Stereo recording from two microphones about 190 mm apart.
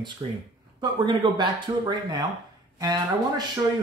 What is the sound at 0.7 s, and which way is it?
Speech, 25° right (ahead or behind).